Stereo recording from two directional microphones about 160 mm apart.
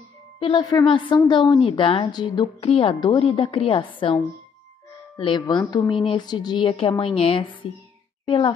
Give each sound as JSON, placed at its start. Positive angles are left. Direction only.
{"t": 0.4, "sound": "a woman's voice", "side_deg": 35}